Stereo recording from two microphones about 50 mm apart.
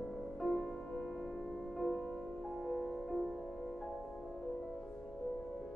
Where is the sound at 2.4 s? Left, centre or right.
Centre.